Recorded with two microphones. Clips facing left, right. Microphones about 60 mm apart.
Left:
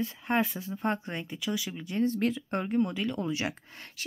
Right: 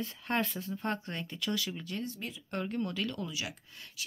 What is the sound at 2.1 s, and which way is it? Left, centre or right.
Speech, left.